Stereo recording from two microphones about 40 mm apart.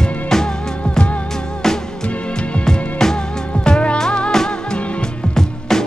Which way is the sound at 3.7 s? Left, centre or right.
Left.